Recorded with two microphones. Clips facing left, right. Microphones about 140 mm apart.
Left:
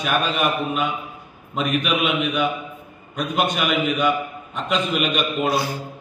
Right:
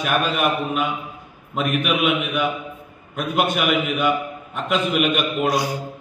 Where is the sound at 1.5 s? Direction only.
5° right (ahead or behind).